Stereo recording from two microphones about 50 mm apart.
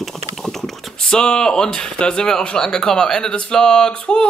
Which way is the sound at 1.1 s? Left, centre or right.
Centre.